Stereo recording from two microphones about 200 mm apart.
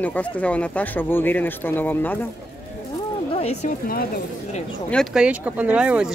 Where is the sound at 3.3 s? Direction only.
30° left (ahead or behind).